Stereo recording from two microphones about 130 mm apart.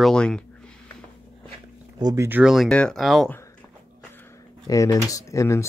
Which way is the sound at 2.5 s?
5° left (ahead or behind).